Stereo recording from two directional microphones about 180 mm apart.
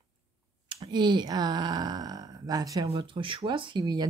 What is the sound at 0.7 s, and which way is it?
Speech, 25° right (ahead or behind).